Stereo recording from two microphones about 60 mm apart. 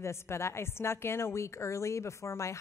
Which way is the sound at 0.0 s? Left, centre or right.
Left.